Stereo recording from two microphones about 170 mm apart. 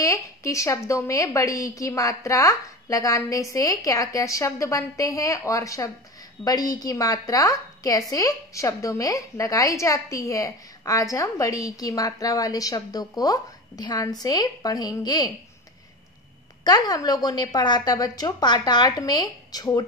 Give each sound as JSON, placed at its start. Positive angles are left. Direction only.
{"t": 0.0, "sound": "a woman's voice", "side_deg": 20}
{"t": 16.6, "sound": "a woman's voice", "side_deg": 20}